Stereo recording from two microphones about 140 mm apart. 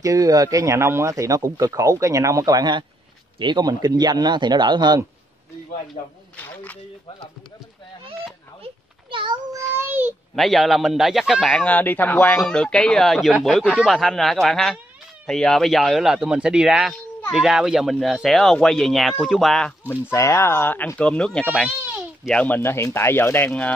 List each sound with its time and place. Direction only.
0.0 s speech: 25° right (ahead or behind)
6.3 s speech: 10° left (ahead or behind)
9.1 s a sound: 35° right (ahead or behind)
9.5 s child singing: 15° right (ahead or behind)
10.3 s a man's voice: centre (ahead or behind)
19.9 s speech: 20° left (ahead or behind)
21.6 s baby cry: 10° right (ahead or behind)
22.3 s speech: 10° left (ahead or behind)